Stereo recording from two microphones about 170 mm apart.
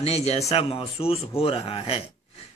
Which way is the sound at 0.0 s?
35° left (ahead or behind).